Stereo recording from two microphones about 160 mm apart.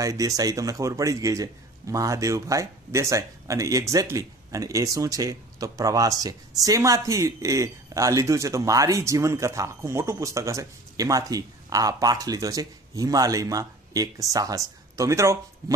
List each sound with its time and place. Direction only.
0.0 s speech: 20° right (ahead or behind)